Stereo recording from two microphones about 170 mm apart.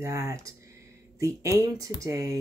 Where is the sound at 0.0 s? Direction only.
20° right (ahead or behind).